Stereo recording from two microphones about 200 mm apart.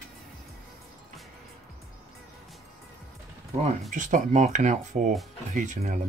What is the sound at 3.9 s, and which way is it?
Speech, 40° right (ahead or behind).